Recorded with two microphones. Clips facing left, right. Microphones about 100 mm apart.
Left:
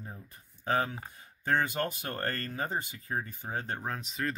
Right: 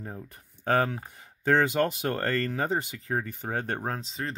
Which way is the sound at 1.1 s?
85° right.